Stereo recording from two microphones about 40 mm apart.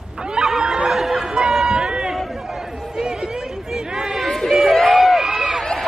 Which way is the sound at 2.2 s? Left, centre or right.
Centre.